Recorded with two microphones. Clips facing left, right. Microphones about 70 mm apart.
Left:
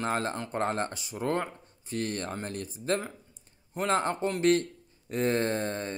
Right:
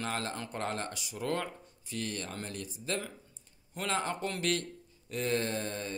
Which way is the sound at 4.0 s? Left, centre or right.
Left.